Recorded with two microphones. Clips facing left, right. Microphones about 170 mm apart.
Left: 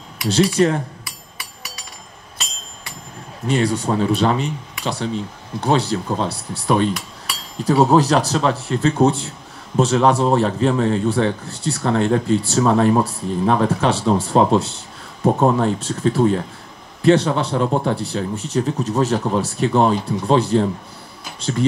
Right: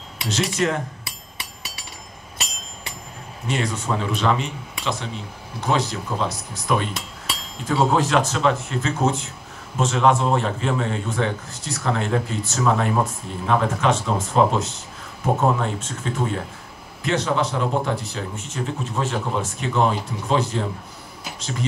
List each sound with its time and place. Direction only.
0.3 s a man's voice: 30° left (ahead or behind)
1.0 s music: 25° right (ahead or behind)
3.4 s a man's voice: 35° left (ahead or behind)